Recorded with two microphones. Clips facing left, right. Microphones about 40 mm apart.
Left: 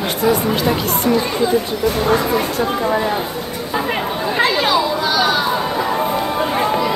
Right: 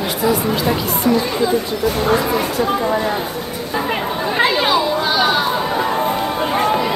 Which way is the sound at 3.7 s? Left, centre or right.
Centre.